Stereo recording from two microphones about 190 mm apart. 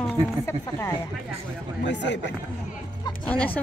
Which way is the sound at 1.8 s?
65° left (ahead or behind).